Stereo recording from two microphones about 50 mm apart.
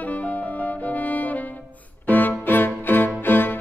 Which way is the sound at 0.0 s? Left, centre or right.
Left.